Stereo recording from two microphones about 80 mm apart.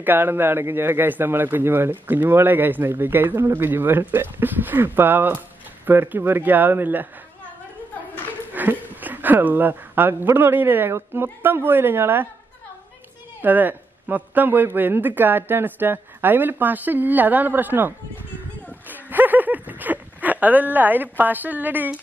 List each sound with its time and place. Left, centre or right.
0.0 s a man's voice: right
8.5 s a man's voice: right
13.4 s a man's voice: right
18.9 s a sound: right